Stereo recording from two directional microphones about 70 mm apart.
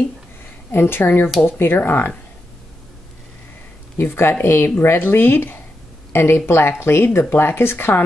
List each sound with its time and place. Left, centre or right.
0.7 s speech: left
4.0 s speech: left